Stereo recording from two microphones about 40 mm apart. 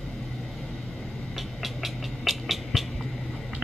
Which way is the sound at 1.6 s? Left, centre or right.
Centre.